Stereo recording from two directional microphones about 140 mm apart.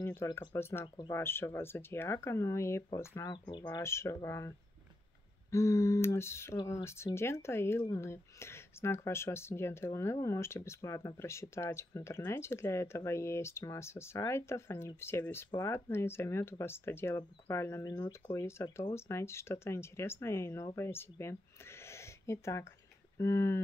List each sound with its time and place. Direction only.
0.0 s speech: 15° left (ahead or behind)